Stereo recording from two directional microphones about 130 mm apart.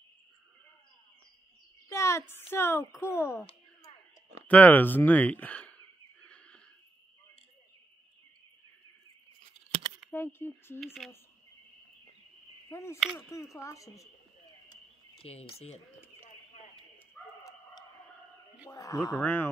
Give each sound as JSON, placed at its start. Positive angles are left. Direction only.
{"t": 1.9, "sound": "a sound", "side_deg": 20}
{"t": 2.5, "sound": "a child's voice", "side_deg": 20}
{"t": 4.5, "sound": "speech", "side_deg": 10}
{"t": 6.2, "sound": "a sound", "side_deg": 10}
{"t": 10.1, "sound": "speech", "side_deg": 15}
{"t": 10.8, "sound": "speech", "side_deg": 0}
{"t": 12.6, "sound": "a child's voice", "side_deg": 20}
{"t": 15.5, "sound": "speech", "side_deg": 55}
{"t": 17.4, "sound": "bow-wow", "side_deg": 25}
{"t": 18.7, "sound": "a child's voice", "side_deg": 25}
{"t": 19.2, "sound": "speech", "side_deg": 15}